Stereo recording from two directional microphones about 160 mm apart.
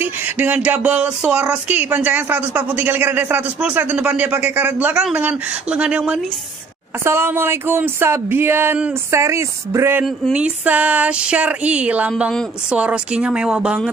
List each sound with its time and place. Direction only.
0.0 s a sound: 10° right (ahead or behind)
0.7 s speech: 10° right (ahead or behind)
10.0 s speech: 5° right (ahead or behind)